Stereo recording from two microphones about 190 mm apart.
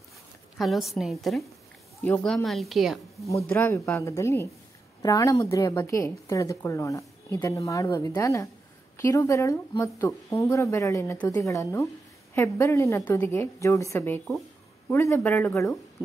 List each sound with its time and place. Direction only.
0.6 s speech: centre (ahead or behind)
3.3 s a woman's voice: 15° left (ahead or behind)